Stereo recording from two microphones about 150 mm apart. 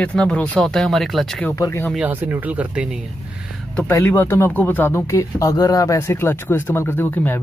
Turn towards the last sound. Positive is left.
turn(degrees=15)  # may be behind; listen again after turning